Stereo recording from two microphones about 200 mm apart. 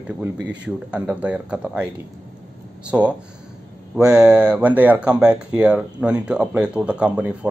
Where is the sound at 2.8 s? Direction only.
5° right (ahead or behind).